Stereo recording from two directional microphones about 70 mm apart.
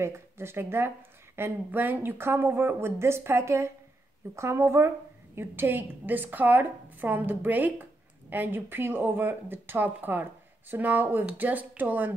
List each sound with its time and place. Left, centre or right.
0.0 s a woman's voice: right